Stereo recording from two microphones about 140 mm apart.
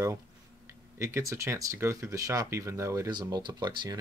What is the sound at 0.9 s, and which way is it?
Speech, 20° right (ahead or behind).